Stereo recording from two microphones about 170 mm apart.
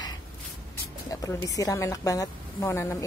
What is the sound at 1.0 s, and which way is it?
Music, 20° left (ahead or behind).